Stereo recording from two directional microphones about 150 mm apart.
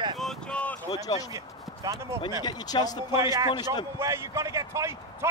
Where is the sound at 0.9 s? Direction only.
25° left (ahead or behind).